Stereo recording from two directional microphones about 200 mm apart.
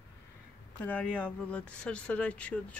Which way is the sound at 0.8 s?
5° left (ahead or behind).